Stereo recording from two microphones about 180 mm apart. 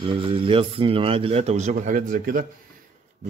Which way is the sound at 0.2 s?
30° right (ahead or behind).